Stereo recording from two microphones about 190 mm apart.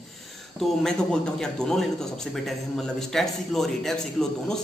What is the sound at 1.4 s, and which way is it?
A man's voice, 5° left (ahead or behind).